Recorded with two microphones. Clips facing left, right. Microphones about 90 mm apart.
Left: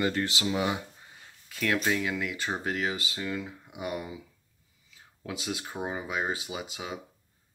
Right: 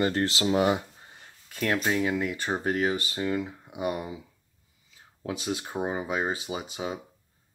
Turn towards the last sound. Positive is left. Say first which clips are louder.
# right 4 dB
turn(degrees=-35)  # may be behind; listen again after turning